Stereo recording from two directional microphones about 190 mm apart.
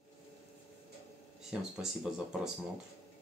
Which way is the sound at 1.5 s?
5° right (ahead or behind).